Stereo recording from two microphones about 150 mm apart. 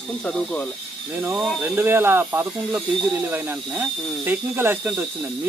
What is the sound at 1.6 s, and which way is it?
Speech, 15° right (ahead or behind).